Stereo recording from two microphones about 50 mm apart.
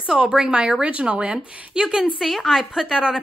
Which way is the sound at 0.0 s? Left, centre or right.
Right.